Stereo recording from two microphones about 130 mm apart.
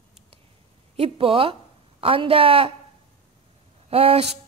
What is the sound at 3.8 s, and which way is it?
Speech, 50° right (ahead or behind).